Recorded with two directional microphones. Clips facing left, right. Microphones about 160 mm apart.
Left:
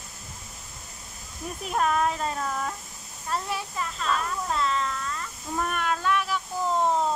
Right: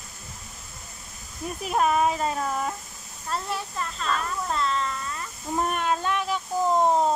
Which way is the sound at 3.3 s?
5° left (ahead or behind).